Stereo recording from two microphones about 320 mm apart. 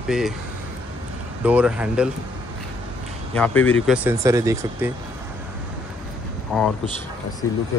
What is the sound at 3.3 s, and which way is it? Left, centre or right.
Speech, centre.